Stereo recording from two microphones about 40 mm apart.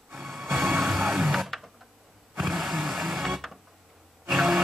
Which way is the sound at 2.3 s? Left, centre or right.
Centre.